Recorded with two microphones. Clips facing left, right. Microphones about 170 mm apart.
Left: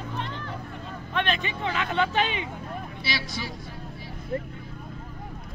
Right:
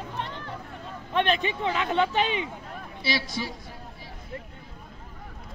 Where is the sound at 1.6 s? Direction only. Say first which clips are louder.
Even; centre (ahead or behind).